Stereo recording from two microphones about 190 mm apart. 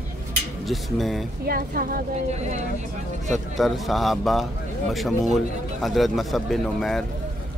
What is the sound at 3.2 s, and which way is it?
A man's voice, centre (ahead or behind).